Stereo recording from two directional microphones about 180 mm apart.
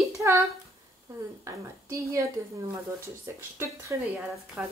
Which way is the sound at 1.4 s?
15° right (ahead or behind).